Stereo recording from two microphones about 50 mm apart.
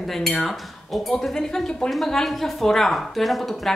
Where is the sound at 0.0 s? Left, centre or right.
Centre.